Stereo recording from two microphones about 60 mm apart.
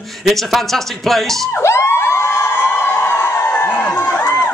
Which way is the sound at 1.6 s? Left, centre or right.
Left.